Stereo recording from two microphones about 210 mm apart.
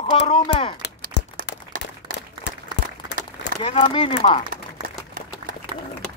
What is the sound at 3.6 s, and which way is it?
Speech, 25° left (ahead or behind).